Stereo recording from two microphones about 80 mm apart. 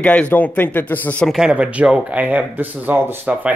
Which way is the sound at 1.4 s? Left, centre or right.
Centre.